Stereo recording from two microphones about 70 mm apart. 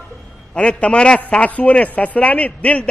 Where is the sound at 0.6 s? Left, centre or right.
Centre.